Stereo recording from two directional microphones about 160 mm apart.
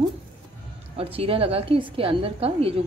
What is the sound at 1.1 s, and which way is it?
A woman's voice, 35° right (ahead or behind).